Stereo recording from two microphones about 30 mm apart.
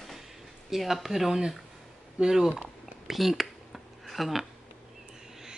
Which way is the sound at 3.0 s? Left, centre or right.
Centre.